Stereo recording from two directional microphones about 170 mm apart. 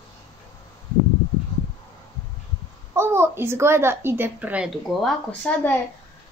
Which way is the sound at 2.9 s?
15° right (ahead or behind).